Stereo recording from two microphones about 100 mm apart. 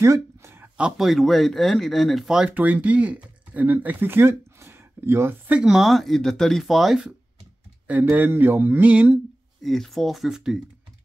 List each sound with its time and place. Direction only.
0.0 s a sound: 30° right (ahead or behind)
0.7 s speech: 5° right (ahead or behind); by 5.3 s 25° right (ahead or behind)
5.5 s speech: 5° right (ahead or behind)
7.8 s speech: 15° right (ahead or behind)
9.6 s speech: centre (ahead or behind)